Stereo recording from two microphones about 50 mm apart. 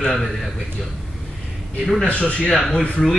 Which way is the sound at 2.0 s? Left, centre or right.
Left.